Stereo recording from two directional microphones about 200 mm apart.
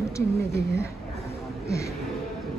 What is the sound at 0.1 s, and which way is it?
Speech, 15° left (ahead or behind).